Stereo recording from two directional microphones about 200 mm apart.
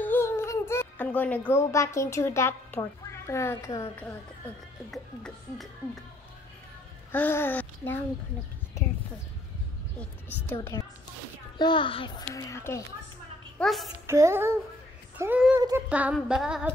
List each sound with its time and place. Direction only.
0.0 s a child's voice: 10° left (ahead or behind)
4.9 s a child's voice: centre (ahead or behind)
7.1 s a child's voice: 10° left (ahead or behind)
9.9 s a woman's voice: 10° left (ahead or behind)
11.5 s a child's voice: 25° left (ahead or behind)
13.6 s a woman's voice: centre (ahead or behind)
14.0 s child singing: 15° right (ahead or behind)
16.2 s a child's voice: 5° right (ahead or behind)